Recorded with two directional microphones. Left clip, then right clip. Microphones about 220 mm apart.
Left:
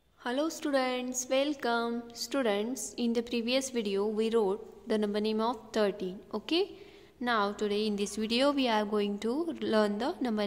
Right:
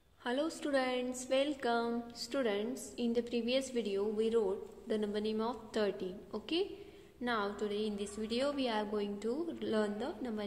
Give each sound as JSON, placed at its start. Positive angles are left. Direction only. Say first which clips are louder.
{"t": 0.2, "sound": "a woman's voice", "louder": "left 4 dB", "side_deg": 20}